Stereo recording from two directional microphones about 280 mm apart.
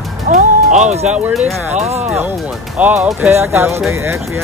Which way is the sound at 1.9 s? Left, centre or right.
Right.